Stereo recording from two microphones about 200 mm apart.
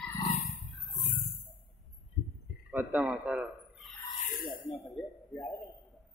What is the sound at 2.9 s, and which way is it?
Speech, 5° right (ahead or behind).